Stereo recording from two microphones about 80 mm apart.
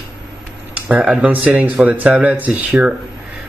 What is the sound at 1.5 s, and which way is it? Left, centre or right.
A man's voice, centre.